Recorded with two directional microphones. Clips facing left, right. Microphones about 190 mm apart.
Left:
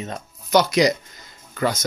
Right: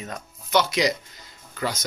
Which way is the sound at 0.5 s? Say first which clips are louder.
Left 5 dB; 45° left (ahead or behind).